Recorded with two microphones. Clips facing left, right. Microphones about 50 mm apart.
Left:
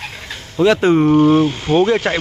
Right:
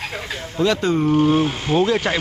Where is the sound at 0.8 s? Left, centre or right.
Left.